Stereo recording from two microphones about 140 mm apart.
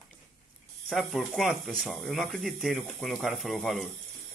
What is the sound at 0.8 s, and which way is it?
Speech, centre (ahead or behind).